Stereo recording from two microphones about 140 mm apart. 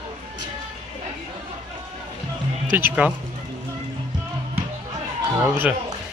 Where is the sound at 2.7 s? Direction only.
15° right (ahead or behind).